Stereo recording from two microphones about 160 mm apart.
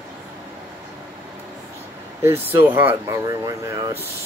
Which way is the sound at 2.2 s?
15° right (ahead or behind).